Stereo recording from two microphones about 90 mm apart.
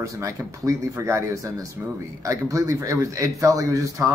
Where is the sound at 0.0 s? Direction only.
35° right (ahead or behind).